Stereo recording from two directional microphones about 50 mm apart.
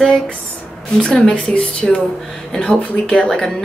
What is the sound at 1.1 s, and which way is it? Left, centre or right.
A woman's voice, centre.